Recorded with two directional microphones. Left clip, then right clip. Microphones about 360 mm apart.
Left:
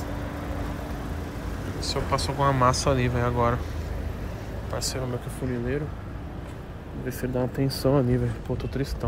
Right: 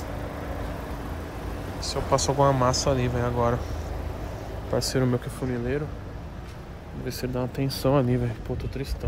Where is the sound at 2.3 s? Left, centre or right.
Centre.